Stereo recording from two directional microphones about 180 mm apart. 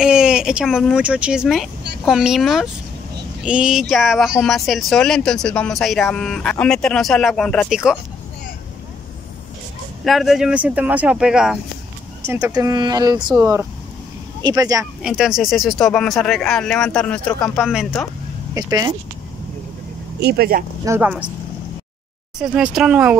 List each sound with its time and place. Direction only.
0.0 s speech: 5° right (ahead or behind)
10.0 s speech: centre (ahead or behind)
12.5 s speech: 25° right (ahead or behind)
15.0 s speech: 5° right (ahead or behind)
18.5 s speech: 20° right (ahead or behind)
20.2 s speech: 60° right (ahead or behind)
20.8 s speech: 10° right (ahead or behind)
22.4 s speech: 5° right (ahead or behind)